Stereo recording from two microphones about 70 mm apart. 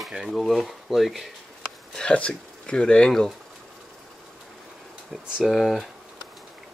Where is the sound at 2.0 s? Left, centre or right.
Centre.